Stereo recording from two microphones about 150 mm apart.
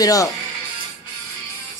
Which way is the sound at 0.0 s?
25° left (ahead or behind).